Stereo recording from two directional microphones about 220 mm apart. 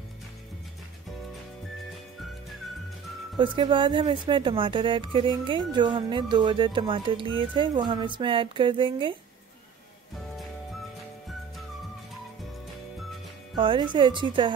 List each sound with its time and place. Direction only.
3.3 s speech: 20° right (ahead or behind)
13.6 s speech: 20° right (ahead or behind)